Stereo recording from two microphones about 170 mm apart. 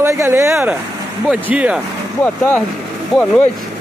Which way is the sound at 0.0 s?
15° right (ahead or behind).